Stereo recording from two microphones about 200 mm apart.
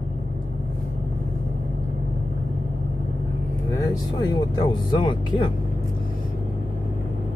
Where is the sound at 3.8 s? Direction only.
20° left (ahead or behind).